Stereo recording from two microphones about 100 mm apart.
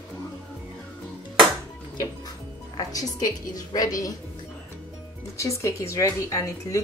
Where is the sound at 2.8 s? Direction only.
35° left (ahead or behind).